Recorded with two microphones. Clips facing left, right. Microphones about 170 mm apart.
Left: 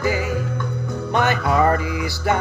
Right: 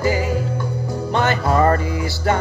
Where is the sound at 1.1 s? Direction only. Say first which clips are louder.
Even; 20° left (ahead or behind).